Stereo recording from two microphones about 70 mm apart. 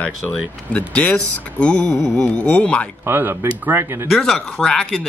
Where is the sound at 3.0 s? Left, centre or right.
Right.